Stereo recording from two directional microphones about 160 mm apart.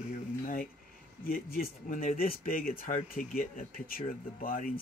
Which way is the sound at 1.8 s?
60° left (ahead or behind).